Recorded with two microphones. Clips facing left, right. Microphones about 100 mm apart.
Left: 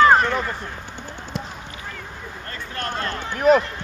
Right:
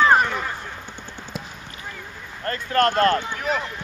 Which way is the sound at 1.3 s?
5° right (ahead or behind).